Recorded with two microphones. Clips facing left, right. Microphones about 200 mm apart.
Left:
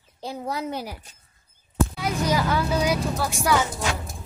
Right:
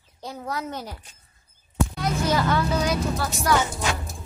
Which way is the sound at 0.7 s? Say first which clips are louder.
Left 3 dB; 10° left (ahead or behind).